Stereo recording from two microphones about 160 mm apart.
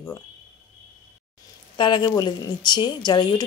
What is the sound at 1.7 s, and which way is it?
A woman's voice, 30° left (ahead or behind).